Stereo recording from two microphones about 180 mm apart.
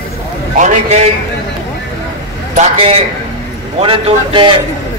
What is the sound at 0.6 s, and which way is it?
Speech, 40° right (ahead or behind).